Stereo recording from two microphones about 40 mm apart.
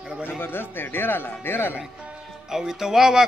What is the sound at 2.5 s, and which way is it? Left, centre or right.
Speech, centre.